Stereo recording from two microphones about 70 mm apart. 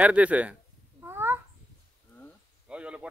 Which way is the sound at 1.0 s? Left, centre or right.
Right.